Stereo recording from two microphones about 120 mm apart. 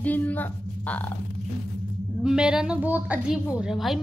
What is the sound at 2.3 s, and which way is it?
Speech, 5° right (ahead or behind).